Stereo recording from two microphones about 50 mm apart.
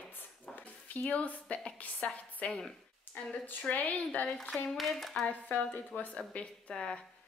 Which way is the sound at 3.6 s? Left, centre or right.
Left.